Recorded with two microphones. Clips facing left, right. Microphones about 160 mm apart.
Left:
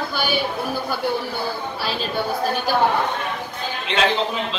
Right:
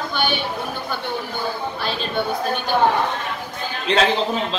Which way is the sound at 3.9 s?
40° right (ahead or behind).